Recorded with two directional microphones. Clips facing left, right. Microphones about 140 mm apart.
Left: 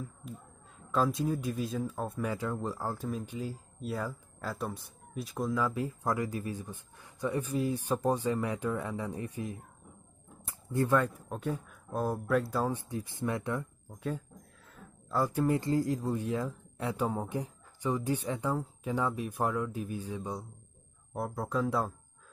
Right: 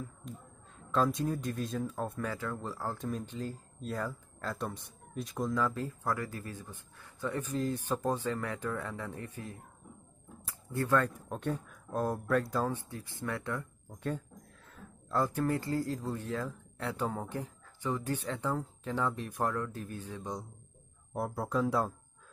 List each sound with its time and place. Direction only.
0.2 s speech: centre (ahead or behind); by 9.6 s 15° left (ahead or behind)
10.7 s speech: 15° left (ahead or behind)
12.7 s speech: 15° left (ahead or behind)
15.0 s speech: 5° left (ahead or behind)
21.1 s speech: centre (ahead or behind)